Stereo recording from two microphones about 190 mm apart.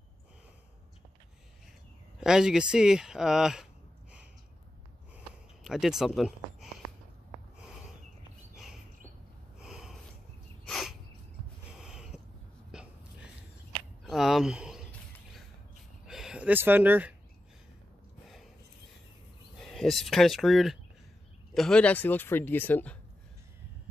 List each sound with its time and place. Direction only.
2.1 s speech: 5° right (ahead or behind)
5.6 s speech: centre (ahead or behind)
9.6 s snort: 5° right (ahead or behind)
10.7 s a sound: centre (ahead or behind)
12.7 s hiccup: centre (ahead or behind)
14.0 s a sound: centre (ahead or behind)
14.9 s a sound: 10° left (ahead or behind)
16.1 s speech: 5° right (ahead or behind)
19.6 s speech: centre (ahead or behind)